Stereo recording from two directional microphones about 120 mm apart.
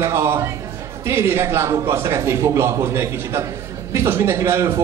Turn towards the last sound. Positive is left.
turn(degrees=-25)  # may be behind; listen again after turning